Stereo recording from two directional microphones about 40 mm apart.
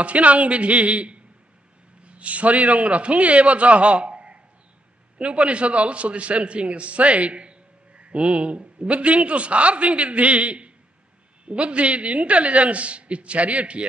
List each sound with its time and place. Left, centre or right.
0.0 s a man's voice: right